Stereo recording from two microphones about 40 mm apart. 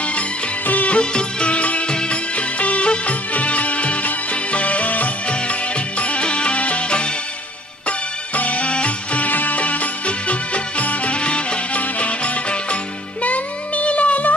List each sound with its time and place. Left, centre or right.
0.7 s music: left
0.9 s music: left
8.4 s music: left
9.3 s music: left
9.6 s music: left
13.2 s child singing: left